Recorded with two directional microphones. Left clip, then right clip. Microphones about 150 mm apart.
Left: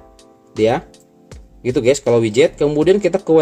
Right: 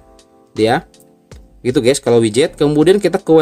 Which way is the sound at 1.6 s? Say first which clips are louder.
Right 1 dB; 30° right (ahead or behind).